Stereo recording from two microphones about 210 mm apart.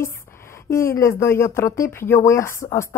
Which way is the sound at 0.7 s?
15° left (ahead or behind).